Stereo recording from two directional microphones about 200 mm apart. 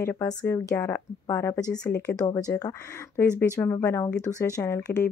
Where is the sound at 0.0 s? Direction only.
10° left (ahead or behind).